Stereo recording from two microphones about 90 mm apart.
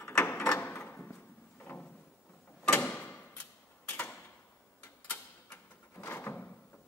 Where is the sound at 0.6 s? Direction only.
20° left (ahead or behind).